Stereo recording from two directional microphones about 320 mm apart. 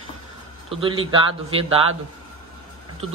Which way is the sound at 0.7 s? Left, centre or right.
Centre.